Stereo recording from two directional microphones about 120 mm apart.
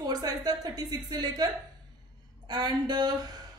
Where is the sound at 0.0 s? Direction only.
35° right (ahead or behind).